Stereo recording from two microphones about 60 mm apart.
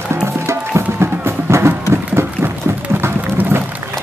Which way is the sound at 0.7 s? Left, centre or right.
Right.